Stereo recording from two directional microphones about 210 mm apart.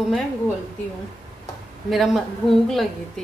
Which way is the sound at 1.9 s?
Centre (ahead or behind).